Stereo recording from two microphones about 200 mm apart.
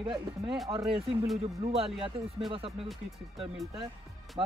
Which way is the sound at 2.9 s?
Centre (ahead or behind).